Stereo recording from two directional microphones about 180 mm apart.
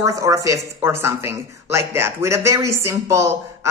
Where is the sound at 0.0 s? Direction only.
20° right (ahead or behind).